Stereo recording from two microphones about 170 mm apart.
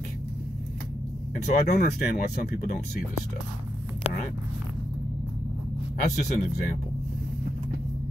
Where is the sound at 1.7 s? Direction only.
65° left (ahead or behind).